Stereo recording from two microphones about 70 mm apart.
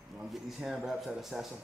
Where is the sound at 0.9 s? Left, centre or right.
Centre.